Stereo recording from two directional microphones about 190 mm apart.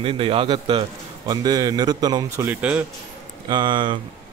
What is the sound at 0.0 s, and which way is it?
Speech, 30° right (ahead or behind).